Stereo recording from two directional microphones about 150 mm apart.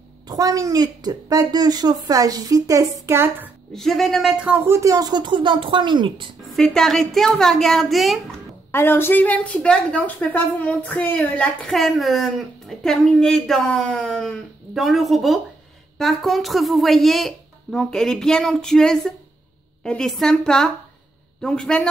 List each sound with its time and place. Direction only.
0.3 s a woman's voice: 25° right (ahead or behind)
3.7 s speech: centre (ahead or behind)
4.7 s a woman's voice: 25° right (ahead or behind)
6.5 s speech: 5° left (ahead or behind)
8.7 s a woman's voice: 15° left (ahead or behind)